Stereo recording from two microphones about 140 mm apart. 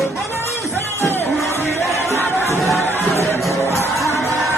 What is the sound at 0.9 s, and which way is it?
Music, 15° left (ahead or behind).